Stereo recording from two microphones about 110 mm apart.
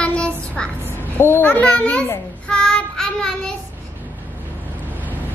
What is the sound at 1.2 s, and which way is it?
Speech, 20° left (ahead or behind).